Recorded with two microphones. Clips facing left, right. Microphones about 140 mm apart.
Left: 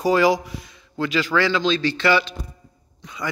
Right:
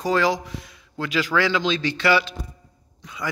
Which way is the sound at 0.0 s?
10° left (ahead or behind).